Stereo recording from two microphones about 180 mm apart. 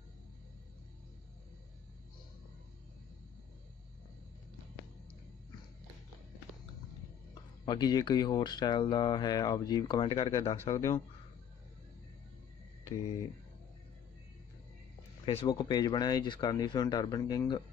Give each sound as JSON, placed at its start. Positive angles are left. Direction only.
{"t": 7.6, "sound": "speech", "side_deg": 25}
{"t": 15.2, "sound": "speech", "side_deg": 25}